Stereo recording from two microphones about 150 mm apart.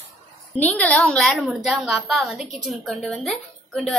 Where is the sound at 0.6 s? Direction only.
10° left (ahead or behind).